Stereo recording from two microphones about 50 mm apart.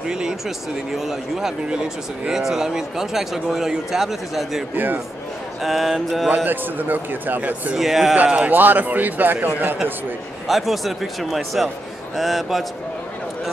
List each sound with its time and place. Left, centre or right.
0.1 s speech: centre
1.7 s speech: centre
4.7 s a man's voice: right
5.6 s speech: centre
6.3 s a man's voice: right
7.7 s speech: centre
8.2 s a man's voice: right
10.5 s speech: centre